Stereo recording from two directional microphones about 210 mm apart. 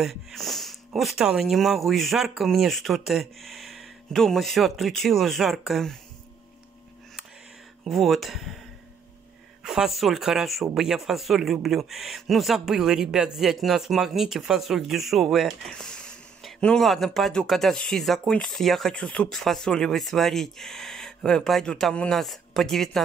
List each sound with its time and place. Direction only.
0.0 s speech: centre (ahead or behind)
7.8 s speech: centre (ahead or behind)
9.6 s speech: centre (ahead or behind)